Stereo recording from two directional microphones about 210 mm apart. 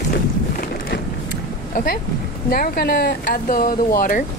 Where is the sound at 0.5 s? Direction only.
50° left (ahead or behind).